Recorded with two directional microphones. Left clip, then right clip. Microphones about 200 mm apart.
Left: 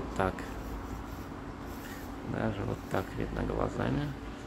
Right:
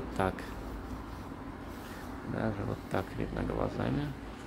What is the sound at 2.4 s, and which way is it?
Speech, 5° right (ahead or behind).